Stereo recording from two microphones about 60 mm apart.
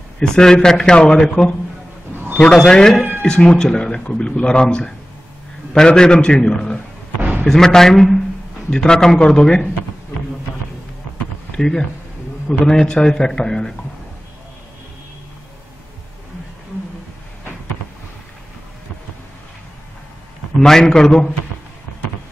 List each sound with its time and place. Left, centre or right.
0.2 s speech: centre
7.2 s a sound: right
7.4 s speech: centre
11.5 s speech: centre
20.5 s speech: centre